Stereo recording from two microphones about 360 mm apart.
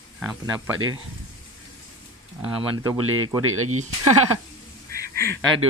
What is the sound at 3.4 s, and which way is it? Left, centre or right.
Speech, right.